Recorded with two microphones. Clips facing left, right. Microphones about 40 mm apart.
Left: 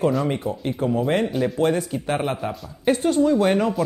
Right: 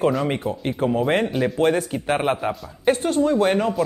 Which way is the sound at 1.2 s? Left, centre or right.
Centre.